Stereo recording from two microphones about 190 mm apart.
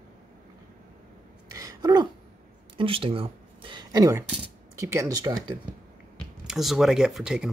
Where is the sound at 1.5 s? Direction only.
20° right (ahead or behind).